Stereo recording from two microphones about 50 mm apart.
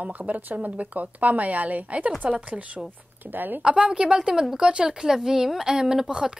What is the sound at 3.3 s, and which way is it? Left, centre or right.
Speech, right.